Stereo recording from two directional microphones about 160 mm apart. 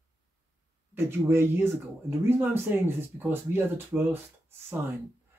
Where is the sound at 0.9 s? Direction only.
15° right (ahead or behind).